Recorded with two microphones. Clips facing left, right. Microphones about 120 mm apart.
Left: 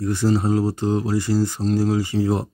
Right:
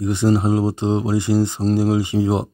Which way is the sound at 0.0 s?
20° right (ahead or behind).